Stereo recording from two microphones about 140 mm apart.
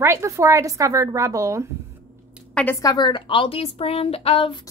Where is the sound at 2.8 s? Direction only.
30° left (ahead or behind).